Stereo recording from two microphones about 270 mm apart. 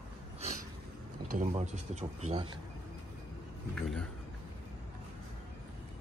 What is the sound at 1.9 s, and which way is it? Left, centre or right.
Speech, right.